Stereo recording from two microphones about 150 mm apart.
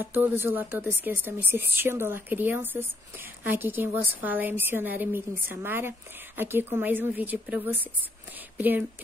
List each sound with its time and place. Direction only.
0.0 s a woman's voice: 15° right (ahead or behind)